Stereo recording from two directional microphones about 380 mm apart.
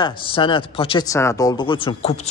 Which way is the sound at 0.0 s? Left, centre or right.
Centre.